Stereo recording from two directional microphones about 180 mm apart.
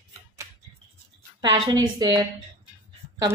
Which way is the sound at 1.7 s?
25° right (ahead or behind).